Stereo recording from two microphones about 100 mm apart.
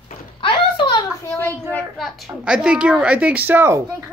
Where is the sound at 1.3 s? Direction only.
20° left (ahead or behind).